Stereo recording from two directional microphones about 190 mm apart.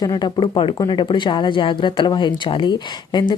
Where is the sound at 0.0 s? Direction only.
20° left (ahead or behind).